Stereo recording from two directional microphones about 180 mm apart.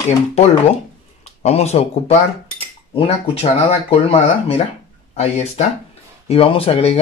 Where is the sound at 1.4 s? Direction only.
35° left (ahead or behind).